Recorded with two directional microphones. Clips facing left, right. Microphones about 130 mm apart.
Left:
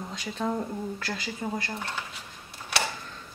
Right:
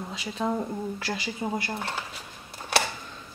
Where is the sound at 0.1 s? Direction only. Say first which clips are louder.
Right 1 dB; 5° right (ahead or behind).